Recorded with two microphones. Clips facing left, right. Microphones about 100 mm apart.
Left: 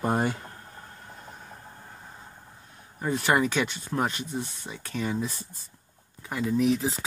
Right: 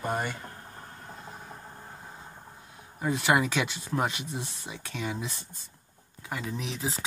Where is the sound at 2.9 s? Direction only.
5° right (ahead or behind).